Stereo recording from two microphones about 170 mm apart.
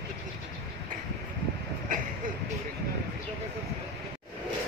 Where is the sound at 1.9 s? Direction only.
55° right (ahead or behind).